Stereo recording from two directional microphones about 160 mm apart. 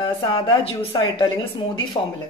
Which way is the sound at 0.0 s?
30° left (ahead or behind).